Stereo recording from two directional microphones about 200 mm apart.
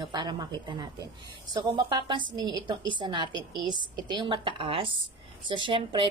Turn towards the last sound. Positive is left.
turn(degrees=-25)  # may be behind; listen again after turning